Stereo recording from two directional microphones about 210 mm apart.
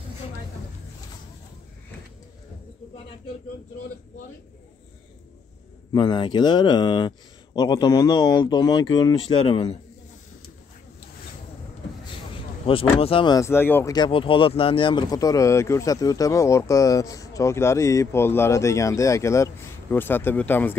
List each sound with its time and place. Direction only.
5.9 s speech: 25° left (ahead or behind)
12.6 s speech: 25° left (ahead or behind); by 20.7 s 10° left (ahead or behind)